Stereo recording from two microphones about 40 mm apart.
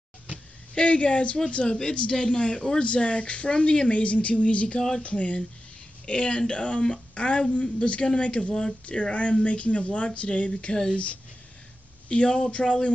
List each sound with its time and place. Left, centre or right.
0.7 s speech: left
4.7 s speech: centre
5.0 s speech: left
12.1 s speech: left